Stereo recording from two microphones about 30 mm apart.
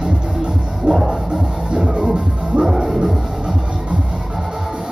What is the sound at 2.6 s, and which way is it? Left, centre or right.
Music, centre.